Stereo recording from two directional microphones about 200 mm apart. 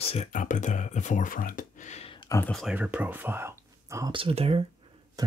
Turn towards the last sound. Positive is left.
turn(degrees=-20)  # may be behind; listen again after turning